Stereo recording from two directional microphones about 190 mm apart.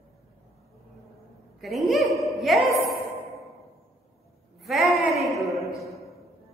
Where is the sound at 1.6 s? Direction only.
Centre (ahead or behind).